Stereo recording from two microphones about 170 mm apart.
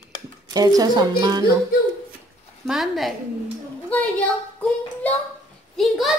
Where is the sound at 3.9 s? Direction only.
10° left (ahead or behind).